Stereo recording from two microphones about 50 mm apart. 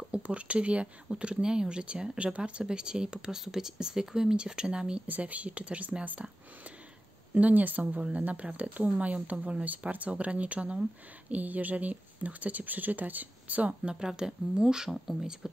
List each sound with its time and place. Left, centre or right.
0.1 s speech: right
5.0 s speech: right
7.3 s speech: right
13.9 s speech: centre